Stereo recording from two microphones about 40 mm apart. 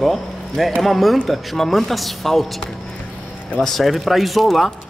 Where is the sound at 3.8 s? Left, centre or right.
Centre.